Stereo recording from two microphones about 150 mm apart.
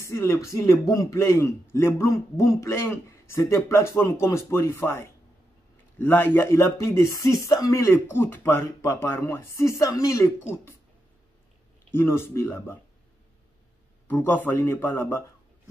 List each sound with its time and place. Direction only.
0.0 s a man's voice: 20° left (ahead or behind)
11.9 s a man's voice: 15° left (ahead or behind)
14.0 s a man's voice: 15° left (ahead or behind)